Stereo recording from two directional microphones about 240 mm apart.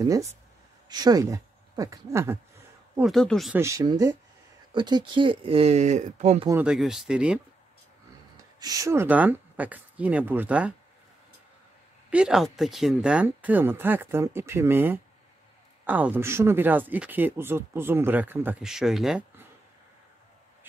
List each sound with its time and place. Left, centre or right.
0.0 s speech: centre
3.0 s speech: centre
3.6 s speech: centre
6.5 s speech: centre
8.5 s speech: centre
12.1 s speech: centre